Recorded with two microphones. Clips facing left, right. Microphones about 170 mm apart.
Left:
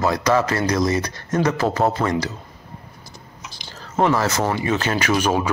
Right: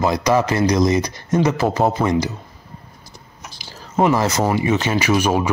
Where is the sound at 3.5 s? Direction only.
10° right (ahead or behind).